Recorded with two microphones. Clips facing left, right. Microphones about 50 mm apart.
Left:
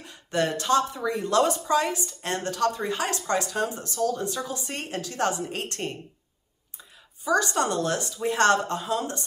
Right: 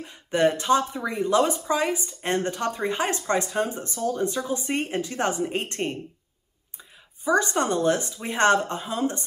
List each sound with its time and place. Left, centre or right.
0.0 s speech: centre
7.2 s speech: right